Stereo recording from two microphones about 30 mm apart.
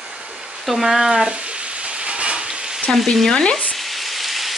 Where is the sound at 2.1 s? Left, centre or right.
Right.